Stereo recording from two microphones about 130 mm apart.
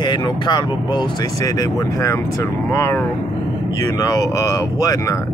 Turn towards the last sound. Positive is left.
turn(degrees=25)  # may be behind; listen again after turning